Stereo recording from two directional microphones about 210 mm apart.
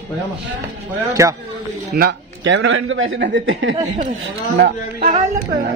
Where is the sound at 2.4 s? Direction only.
70° right (ahead or behind).